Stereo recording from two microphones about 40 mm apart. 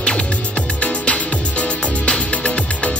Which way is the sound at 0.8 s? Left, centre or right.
Left.